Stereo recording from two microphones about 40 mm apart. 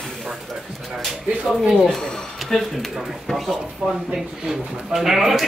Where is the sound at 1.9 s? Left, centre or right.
Centre.